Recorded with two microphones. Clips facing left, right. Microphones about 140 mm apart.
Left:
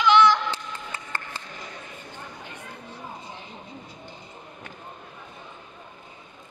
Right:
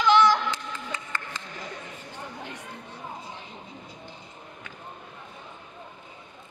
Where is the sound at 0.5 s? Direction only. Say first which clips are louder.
Even; 35° left (ahead or behind).